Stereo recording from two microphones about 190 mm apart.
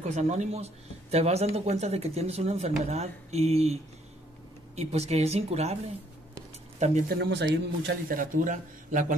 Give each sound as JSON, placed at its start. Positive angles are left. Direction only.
{"t": 0.0, "sound": "speech", "side_deg": -40}
{"t": 4.7, "sound": "speech", "side_deg": -35}
{"t": 6.8, "sound": "speech", "side_deg": -40}
{"t": 7.2, "sound": "speech", "side_deg": -65}